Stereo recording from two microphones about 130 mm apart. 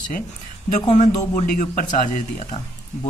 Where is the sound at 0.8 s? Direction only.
60° left (ahead or behind).